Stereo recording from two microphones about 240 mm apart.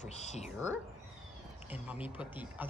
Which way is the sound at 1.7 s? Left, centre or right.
Centre.